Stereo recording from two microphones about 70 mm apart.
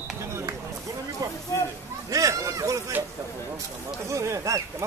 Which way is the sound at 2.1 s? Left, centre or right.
Right.